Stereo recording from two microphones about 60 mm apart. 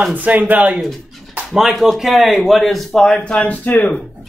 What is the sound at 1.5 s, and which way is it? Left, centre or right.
Speech, centre.